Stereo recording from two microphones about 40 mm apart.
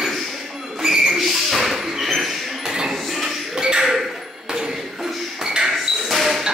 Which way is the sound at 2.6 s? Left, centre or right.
Centre.